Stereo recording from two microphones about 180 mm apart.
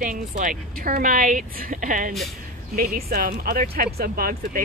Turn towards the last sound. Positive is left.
turn(degrees=-55)  # may be behind; listen again after turning